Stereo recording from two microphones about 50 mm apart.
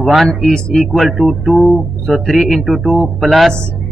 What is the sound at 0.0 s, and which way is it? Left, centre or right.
A man's voice, centre.